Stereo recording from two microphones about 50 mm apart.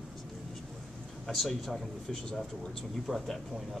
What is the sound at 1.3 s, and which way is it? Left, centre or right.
Speech, centre.